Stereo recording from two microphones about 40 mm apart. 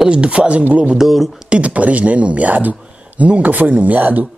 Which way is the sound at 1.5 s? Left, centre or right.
Right.